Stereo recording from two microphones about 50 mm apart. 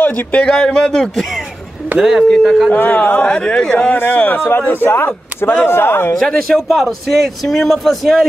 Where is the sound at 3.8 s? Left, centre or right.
Left.